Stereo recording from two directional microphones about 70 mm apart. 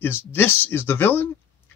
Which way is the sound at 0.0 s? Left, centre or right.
Left.